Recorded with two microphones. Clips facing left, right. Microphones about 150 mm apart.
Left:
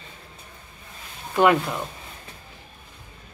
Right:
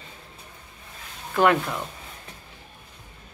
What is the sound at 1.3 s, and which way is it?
Speech, 5° left (ahead or behind).